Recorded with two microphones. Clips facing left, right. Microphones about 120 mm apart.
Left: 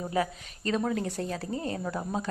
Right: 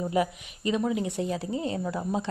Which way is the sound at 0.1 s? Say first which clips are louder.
Right 3 dB; 20° right (ahead or behind).